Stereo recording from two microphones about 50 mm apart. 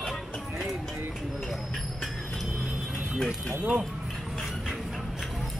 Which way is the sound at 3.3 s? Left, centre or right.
Centre.